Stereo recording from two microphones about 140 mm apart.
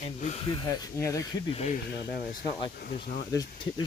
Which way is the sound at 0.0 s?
55° left (ahead or behind).